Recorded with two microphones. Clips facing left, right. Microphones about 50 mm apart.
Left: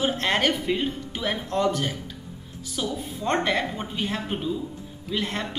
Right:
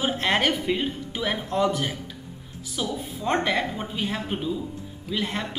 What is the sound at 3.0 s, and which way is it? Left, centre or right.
A woman's voice, centre.